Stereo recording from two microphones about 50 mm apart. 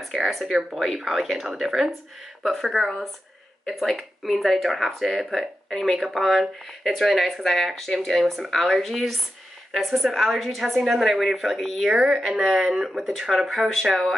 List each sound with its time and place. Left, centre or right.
0.0 s speech: centre
11.9 s speech: centre